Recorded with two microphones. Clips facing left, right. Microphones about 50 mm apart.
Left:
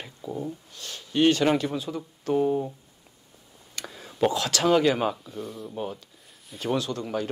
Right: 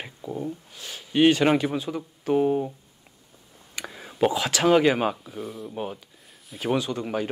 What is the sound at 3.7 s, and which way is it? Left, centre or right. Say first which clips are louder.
Speech: right 3 dB; centre.